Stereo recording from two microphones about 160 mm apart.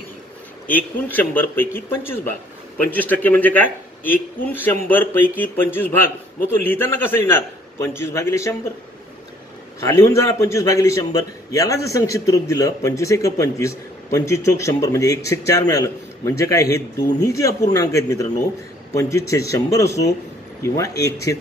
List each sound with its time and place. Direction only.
0.7 s a man's voice: 10° left (ahead or behind)
9.8 s a man's voice: 15° left (ahead or behind)